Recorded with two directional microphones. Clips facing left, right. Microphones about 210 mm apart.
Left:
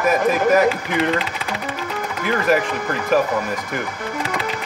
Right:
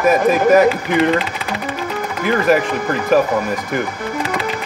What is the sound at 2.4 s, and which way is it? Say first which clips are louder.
Speech: right 2 dB; 30° right (ahead or behind).